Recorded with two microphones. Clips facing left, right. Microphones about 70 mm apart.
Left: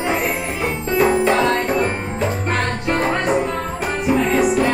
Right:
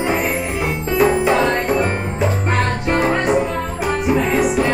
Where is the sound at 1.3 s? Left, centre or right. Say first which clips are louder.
Right 1 dB; centre.